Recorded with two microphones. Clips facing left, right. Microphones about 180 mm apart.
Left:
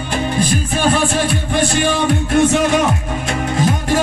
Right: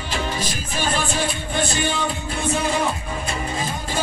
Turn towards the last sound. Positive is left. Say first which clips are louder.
# left 10 dB
turn(degrees=85)